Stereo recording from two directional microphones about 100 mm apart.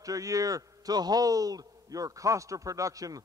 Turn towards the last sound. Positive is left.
turn(degrees=-35)  # may be behind; listen again after turning